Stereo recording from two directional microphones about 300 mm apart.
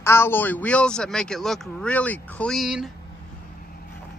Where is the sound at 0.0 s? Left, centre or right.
Centre.